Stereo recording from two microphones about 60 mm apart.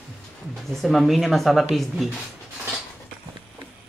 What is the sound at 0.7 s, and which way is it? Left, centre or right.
Speech, centre.